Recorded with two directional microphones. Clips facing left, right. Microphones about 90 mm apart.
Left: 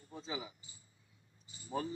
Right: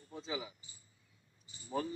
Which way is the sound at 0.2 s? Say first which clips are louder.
Right 2 dB; 30° left (ahead or behind).